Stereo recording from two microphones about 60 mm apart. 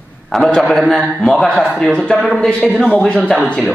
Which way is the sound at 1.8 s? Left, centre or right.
Centre.